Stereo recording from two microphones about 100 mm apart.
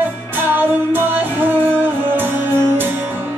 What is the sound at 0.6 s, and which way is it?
Music, 20° right (ahead or behind).